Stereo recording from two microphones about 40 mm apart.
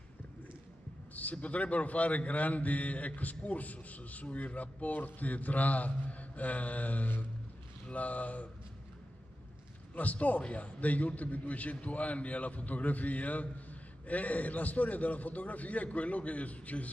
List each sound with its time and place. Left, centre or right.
1.1 s a man's voice: left
7.8 s a man's voice: left
9.9 s a man's voice: left